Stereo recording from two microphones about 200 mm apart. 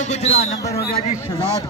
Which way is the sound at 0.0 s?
35° left (ahead or behind).